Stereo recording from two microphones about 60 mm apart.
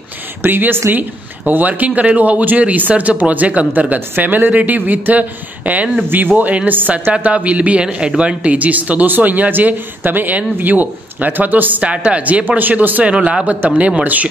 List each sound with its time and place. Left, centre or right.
0.4 s speech: right
11.9 s a man's voice: centre